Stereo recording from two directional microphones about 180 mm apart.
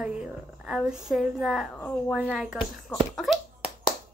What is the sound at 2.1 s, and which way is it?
Speech, 5° right (ahead or behind).